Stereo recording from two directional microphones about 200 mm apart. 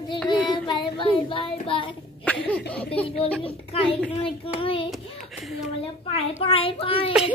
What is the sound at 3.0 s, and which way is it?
Speech, 30° left (ahead or behind).